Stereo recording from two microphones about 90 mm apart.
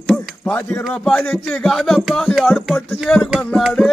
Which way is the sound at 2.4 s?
5° right (ahead or behind).